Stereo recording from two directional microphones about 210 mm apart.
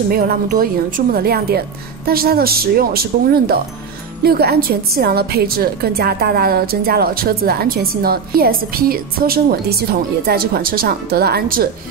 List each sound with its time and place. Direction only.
0.1 s a woman's voice: 45° right (ahead or behind)